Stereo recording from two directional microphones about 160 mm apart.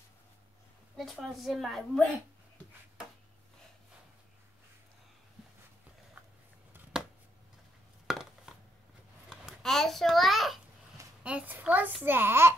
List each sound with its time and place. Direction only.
0.9 s a woman's voice: centre (ahead or behind)
8.1 s a sound: 5° right (ahead or behind)
11.2 s a child's voice: 10° right (ahead or behind)